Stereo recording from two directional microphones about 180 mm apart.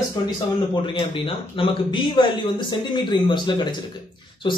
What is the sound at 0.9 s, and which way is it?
Speech, 30° left (ahead or behind).